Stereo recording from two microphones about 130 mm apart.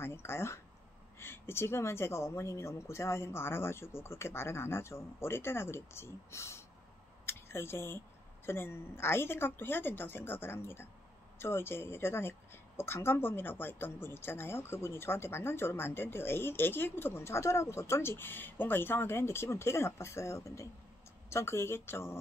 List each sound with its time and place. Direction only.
0.0 s a woman's voice: 20° left (ahead or behind)
7.2 s a sound: 20° left (ahead or behind)
8.5 s a woman's voice: 20° left (ahead or behind)